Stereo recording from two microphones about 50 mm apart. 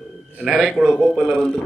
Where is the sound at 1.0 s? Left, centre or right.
Centre.